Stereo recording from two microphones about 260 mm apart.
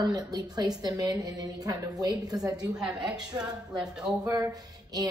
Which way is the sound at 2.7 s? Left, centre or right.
Centre.